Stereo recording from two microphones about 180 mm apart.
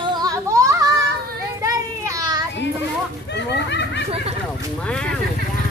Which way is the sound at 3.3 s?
70° left (ahead or behind).